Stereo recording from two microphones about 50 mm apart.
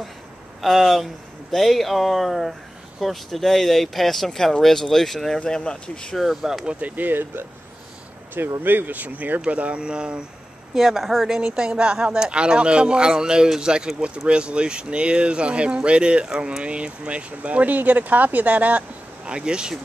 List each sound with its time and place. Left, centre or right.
0.6 s speech: centre
5.5 s speech: centre
6.1 s speech: centre
6.8 s speech: right
8.6 s speech: right; by 10.2 s centre
10.7 s speech: centre
11.2 s speech: centre